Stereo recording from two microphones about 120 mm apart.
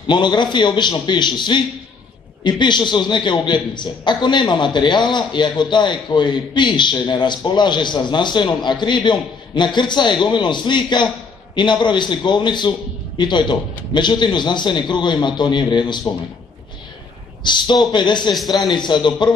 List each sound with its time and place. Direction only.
0.0 s a man's voice: 40° left (ahead or behind)
17.4 s a man's voice: 40° left (ahead or behind)